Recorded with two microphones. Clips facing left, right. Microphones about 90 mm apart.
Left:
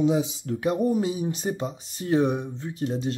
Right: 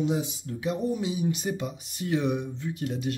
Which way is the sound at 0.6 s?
50° left (ahead or behind).